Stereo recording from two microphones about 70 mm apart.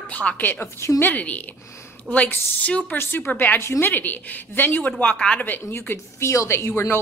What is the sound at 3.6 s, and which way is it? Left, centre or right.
Speech, left.